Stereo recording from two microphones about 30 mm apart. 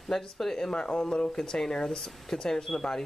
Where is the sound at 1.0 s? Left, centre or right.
Left.